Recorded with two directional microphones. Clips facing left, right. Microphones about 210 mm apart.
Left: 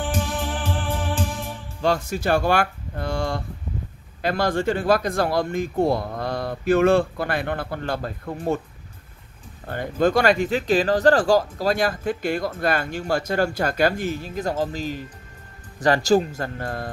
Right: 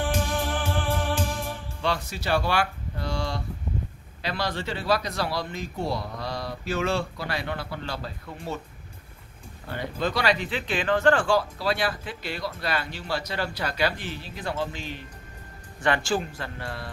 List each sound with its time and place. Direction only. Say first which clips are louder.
0.1 s music: left 1 dB; 5° left (ahead or behind)
1.8 s speech: left 7 dB; 45° left (ahead or behind)
9.7 s speech: left 8 dB; 50° left (ahead or behind)